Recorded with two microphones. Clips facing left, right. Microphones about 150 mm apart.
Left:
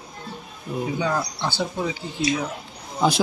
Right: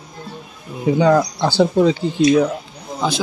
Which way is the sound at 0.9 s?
90° right.